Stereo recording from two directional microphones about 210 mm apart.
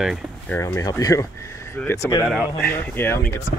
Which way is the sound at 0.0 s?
Centre (ahead or behind).